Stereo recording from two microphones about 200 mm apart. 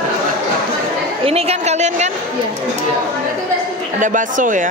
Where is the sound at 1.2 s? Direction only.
30° right (ahead or behind).